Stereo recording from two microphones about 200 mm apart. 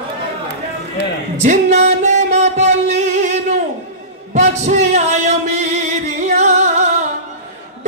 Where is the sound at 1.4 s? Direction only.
35° right (ahead or behind).